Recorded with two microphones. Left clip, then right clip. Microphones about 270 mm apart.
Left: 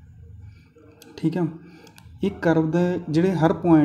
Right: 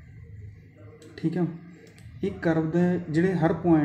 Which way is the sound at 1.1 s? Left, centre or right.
Left.